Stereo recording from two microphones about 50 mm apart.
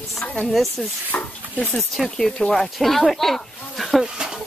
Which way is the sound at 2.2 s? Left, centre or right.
Centre.